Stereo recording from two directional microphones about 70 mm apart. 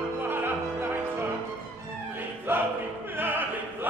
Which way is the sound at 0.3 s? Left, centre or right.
Right.